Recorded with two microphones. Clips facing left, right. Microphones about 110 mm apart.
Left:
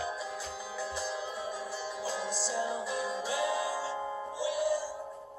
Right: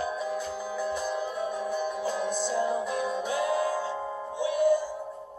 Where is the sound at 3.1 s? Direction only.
50° right (ahead or behind).